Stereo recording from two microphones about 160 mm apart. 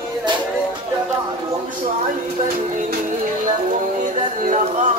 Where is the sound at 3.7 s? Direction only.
55° right (ahead or behind).